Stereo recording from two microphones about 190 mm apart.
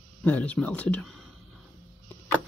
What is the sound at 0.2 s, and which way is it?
Speech, 5° left (ahead or behind).